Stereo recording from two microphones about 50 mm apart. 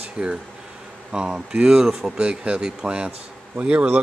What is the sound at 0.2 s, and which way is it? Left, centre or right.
Speech, right.